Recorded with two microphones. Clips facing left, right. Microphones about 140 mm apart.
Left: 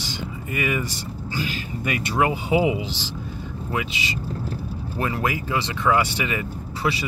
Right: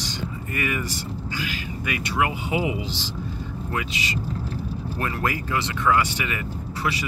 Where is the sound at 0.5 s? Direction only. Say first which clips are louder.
Left 3 dB; 20° left (ahead or behind).